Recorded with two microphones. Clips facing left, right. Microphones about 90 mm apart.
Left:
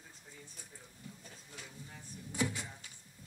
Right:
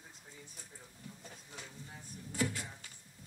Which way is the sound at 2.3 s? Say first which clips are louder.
Even; 15° left (ahead or behind).